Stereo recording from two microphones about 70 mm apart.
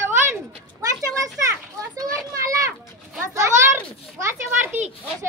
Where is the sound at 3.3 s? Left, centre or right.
Right.